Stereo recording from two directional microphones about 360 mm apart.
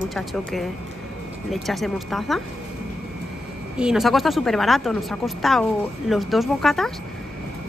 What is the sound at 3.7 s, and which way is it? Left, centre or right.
Speech, centre.